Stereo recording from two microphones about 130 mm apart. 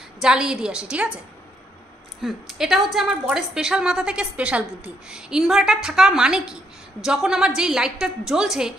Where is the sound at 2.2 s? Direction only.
Centre (ahead or behind).